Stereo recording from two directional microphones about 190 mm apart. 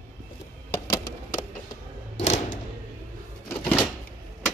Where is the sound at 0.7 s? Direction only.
15° left (ahead or behind).